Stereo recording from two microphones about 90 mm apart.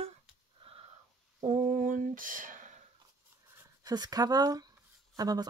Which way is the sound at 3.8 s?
50° right (ahead or behind).